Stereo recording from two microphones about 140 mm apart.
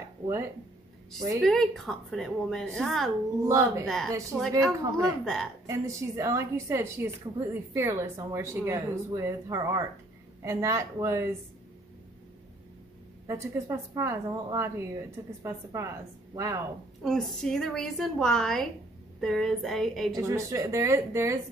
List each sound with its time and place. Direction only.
1.4 s a woman's voice: centre (ahead or behind)
3.4 s a woman's voice: 20° right (ahead or behind)
3.8 s a woman's voice: 5° left (ahead or behind)
4.7 s a woman's voice: 20° right (ahead or behind)
5.2 s a woman's voice: 5° left (ahead or behind)
5.7 s a woman's voice: 20° right (ahead or behind)
13.3 s a woman's voice: 20° right (ahead or behind)
17.0 s a woman's voice: centre (ahead or behind)
20.2 s a woman's voice: 20° right (ahead or behind)